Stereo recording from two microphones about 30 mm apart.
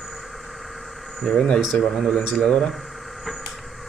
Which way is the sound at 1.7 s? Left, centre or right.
Left.